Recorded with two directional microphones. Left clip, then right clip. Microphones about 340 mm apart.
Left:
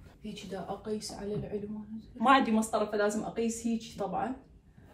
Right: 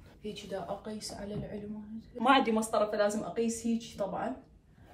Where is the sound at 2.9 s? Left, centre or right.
Centre.